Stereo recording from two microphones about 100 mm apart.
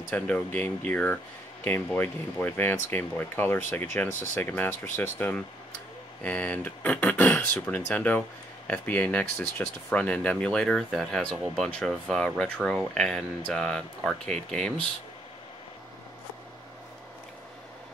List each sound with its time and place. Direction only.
0.1 s speech: 15° left (ahead or behind)